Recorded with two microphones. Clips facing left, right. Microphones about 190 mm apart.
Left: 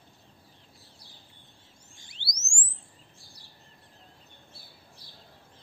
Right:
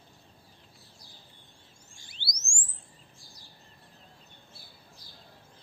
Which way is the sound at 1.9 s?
20° left (ahead or behind).